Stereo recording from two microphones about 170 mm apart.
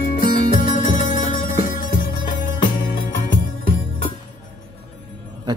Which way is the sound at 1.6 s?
55° left (ahead or behind).